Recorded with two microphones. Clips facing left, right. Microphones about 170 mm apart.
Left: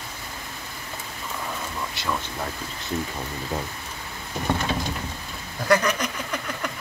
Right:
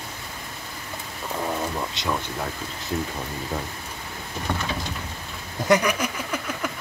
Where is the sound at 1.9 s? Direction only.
20° right (ahead or behind).